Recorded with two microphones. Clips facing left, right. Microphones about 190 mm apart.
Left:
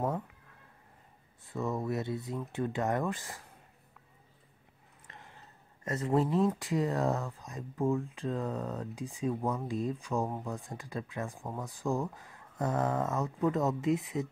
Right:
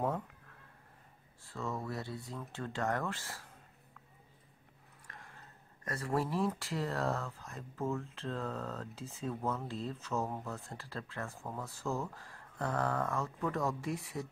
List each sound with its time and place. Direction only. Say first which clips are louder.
1.4 s speech: left 6 dB; 20° left (ahead or behind)
5.0 s a sound: left 1 dB; 25° left (ahead or behind)
5.9 s speech: left 6 dB; 20° left (ahead or behind)